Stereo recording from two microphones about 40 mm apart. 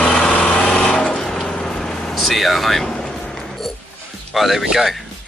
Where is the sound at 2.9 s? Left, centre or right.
Centre.